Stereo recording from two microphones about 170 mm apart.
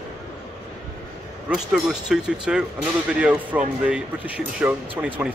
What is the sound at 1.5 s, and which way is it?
Speech, 5° right (ahead or behind).